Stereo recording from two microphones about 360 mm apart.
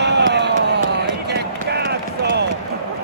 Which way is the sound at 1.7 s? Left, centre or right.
Right.